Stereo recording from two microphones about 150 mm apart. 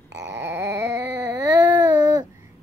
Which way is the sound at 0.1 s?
20° right (ahead or behind).